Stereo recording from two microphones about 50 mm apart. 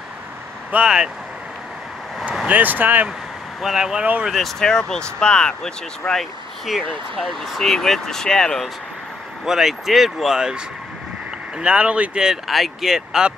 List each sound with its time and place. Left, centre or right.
0.8 s speech: centre
2.4 s speech: right
3.6 s speech: centre
4.3 s speech: centre
6.8 s speech: centre
9.4 s speech: centre
12.4 s speech: centre